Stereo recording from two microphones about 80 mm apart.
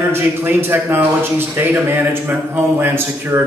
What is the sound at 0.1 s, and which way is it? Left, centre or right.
A man's voice, right.